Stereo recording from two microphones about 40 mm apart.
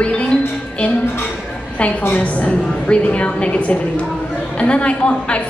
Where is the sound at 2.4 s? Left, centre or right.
Left.